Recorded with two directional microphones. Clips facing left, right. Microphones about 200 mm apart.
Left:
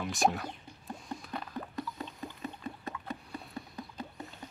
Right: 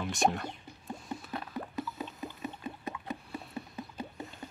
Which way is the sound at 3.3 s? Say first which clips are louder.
Right 2 dB; 5° right (ahead or behind).